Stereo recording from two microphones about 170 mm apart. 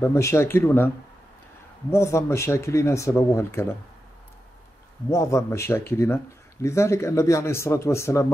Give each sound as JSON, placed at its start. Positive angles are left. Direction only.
{"t": 0.0, "sound": "speech", "side_deg": 15}
{"t": 1.9, "sound": "speech", "side_deg": 15}
{"t": 5.1, "sound": "speech", "side_deg": 15}